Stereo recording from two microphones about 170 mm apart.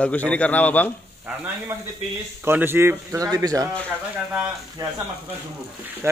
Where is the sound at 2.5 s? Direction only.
10° right (ahead or behind).